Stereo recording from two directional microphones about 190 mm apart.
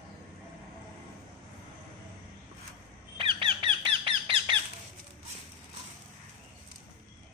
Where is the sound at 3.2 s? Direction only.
25° right (ahead or behind).